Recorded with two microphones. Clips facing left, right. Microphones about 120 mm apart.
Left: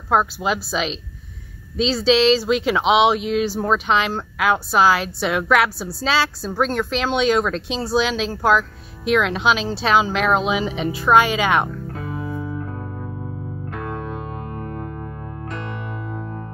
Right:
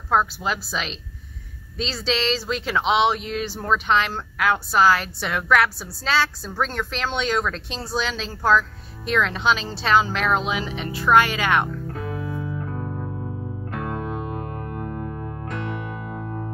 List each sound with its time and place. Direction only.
0.1 s speech: 15° left (ahead or behind)
13.7 s music: 5° right (ahead or behind)